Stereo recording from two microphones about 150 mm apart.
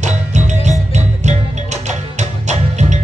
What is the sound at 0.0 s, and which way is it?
Music, 50° right (ahead or behind).